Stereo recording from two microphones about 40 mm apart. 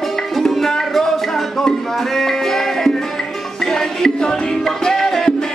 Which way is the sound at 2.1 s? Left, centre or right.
Centre.